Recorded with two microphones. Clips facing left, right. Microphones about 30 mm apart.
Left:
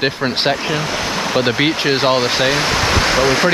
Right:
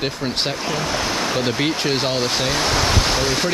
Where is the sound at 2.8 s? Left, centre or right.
Left.